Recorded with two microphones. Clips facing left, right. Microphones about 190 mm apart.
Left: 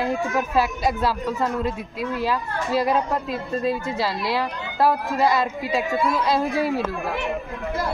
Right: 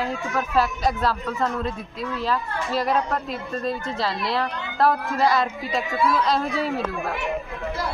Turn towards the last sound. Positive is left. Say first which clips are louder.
# left 1 dB
turn(degrees=0)  # may be behind; listen again after turning